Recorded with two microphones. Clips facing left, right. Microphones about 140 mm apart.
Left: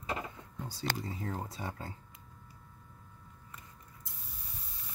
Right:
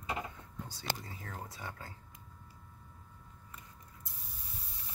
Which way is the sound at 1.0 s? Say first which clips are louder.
Left 7 dB; 30° left (ahead or behind).